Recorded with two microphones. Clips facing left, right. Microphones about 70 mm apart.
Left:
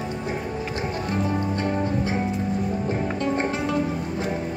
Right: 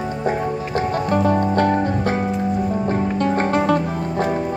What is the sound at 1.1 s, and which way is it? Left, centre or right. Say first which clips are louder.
Music: right 9 dB; right.